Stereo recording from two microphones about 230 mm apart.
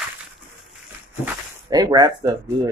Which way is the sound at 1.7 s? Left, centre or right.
Centre.